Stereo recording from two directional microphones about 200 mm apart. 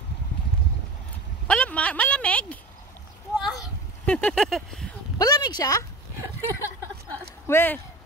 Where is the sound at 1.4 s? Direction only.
5° left (ahead or behind).